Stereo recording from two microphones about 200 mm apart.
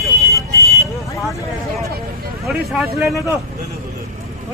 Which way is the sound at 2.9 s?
Centre (ahead or behind).